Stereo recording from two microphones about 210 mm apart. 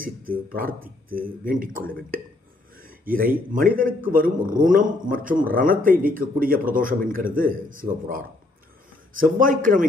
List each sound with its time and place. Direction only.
0.0 s a man's voice: 40° right (ahead or behind)
2.8 s a sound: 45° right (ahead or behind)
3.5 s a man's voice: 40° right (ahead or behind)